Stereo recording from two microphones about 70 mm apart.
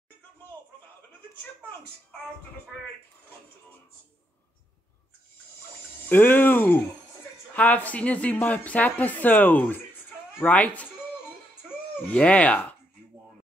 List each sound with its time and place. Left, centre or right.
6.0 s speech: left
12.1 s speech: left